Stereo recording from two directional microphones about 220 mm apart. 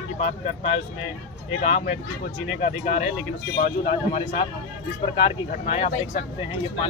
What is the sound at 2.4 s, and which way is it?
Speech, 35° left (ahead or behind).